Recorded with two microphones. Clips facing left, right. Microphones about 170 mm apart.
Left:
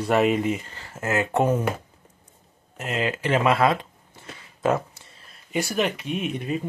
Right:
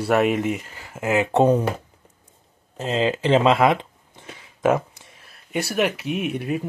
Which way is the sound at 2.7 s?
30° right (ahead or behind).